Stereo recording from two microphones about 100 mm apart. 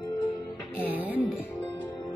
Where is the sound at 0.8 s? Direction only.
15° right (ahead or behind).